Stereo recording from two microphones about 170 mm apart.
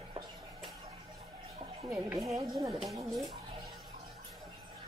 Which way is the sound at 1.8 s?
5° right (ahead or behind).